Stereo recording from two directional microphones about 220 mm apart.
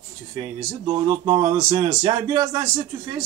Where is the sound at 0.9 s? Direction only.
25° right (ahead or behind).